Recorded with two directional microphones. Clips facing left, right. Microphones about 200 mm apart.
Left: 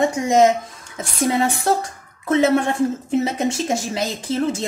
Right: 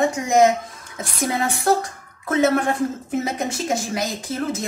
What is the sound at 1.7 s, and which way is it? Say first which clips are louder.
Speech: right 1 dB; 25° left (ahead or behind).